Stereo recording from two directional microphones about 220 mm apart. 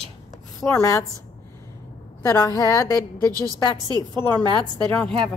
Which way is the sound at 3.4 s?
20° right (ahead or behind).